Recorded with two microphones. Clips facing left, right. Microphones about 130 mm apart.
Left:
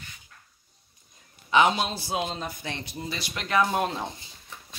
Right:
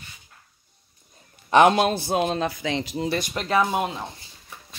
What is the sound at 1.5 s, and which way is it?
A man's voice, 55° right (ahead or behind).